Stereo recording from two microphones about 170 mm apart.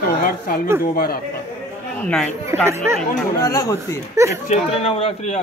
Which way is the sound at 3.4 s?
20° left (ahead or behind).